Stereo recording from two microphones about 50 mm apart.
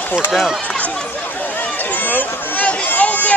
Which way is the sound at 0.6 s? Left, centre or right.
Left.